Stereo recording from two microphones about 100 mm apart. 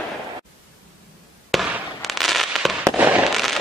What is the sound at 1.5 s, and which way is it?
Fireworks, centre (ahead or behind).